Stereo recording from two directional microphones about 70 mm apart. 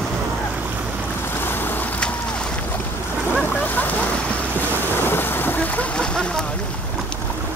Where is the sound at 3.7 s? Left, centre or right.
Left.